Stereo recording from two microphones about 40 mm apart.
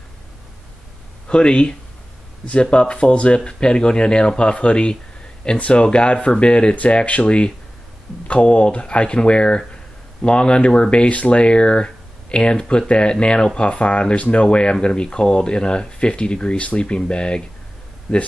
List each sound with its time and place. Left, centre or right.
1.2 s speech: left